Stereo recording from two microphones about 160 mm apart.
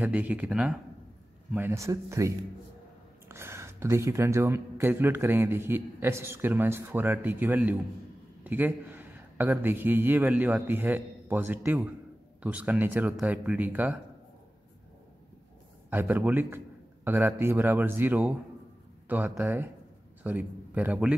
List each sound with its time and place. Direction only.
0.0 s a man's voice: 10° right (ahead or behind)
15.9 s a man's voice: 10° right (ahead or behind)